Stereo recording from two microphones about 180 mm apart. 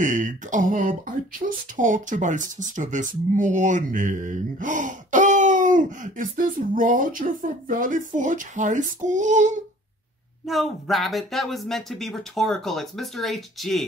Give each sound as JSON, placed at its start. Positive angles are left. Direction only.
{"t": 0.0, "sound": "speech", "side_deg": -45}
{"t": 1.4, "sound": "speech", "side_deg": -35}
{"t": 1.8, "sound": "speech", "side_deg": -45}
{"t": 10.4, "sound": "speech", "side_deg": 0}